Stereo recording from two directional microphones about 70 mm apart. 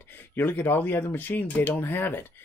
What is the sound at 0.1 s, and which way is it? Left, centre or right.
Speech, left.